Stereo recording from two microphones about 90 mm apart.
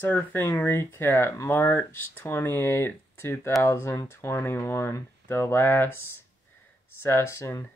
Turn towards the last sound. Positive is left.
turn(degrees=30)  # may be behind; listen again after turning